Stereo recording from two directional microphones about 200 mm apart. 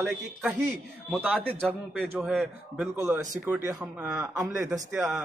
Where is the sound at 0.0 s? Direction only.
5° right (ahead or behind).